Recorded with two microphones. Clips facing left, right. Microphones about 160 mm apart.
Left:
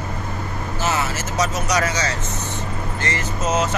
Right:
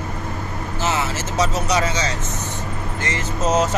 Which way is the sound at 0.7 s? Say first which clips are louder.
Even; 20° right (ahead or behind).